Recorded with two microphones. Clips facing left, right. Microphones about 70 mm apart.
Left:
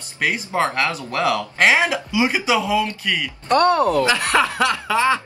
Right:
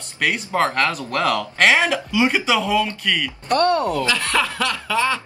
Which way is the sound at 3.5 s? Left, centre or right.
Left.